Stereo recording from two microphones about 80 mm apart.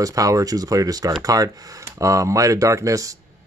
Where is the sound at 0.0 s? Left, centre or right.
Right.